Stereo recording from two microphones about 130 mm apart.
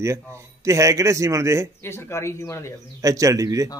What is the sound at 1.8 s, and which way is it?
Speech, 20° left (ahead or behind).